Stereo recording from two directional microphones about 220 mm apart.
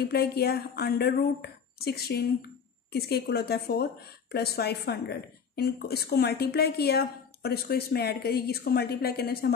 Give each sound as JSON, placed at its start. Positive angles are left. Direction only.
{"t": 0.0, "sound": "speech", "side_deg": 45}